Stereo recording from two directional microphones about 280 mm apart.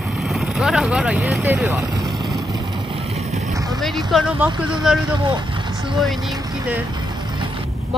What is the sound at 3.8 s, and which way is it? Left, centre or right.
Speech, centre.